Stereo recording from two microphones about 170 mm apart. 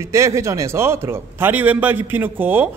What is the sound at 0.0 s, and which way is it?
A man's voice, 15° right (ahead or behind).